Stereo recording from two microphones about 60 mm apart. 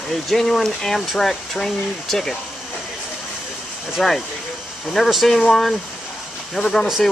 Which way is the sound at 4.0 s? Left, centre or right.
Centre.